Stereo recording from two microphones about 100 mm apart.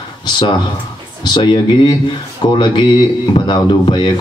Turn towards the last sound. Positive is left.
turn(degrees=50)  # may be behind; listen again after turning